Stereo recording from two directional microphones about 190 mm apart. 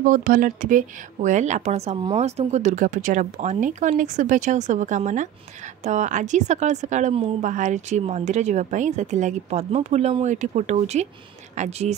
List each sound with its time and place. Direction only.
0.0 s speech: 45° right (ahead or behind)